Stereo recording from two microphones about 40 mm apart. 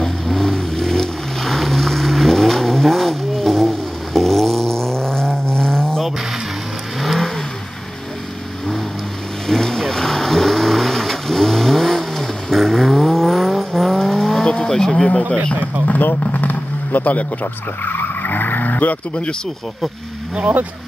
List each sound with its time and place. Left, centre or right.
0.3 s vehicle: centre
7.0 s vehicle: centre
9.6 s vehicle: centre
14.4 s vehicle: left
15.9 s vehicle: left